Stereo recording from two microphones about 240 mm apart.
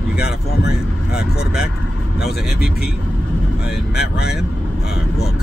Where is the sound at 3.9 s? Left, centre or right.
Left.